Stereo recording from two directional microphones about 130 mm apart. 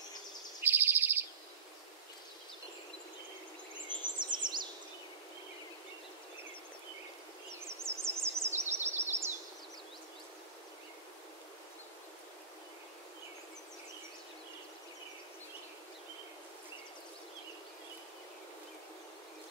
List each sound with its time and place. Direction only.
0.6 s a sound: 15° right (ahead or behind)
3.9 s bird vocalization: 35° right (ahead or behind)
7.6 s bird vocalization: 20° right (ahead or behind)